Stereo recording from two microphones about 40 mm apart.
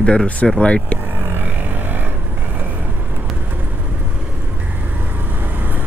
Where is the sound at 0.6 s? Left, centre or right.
Left.